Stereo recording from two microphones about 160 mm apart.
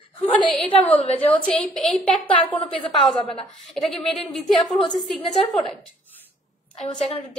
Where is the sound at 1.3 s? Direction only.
5° left (ahead or behind).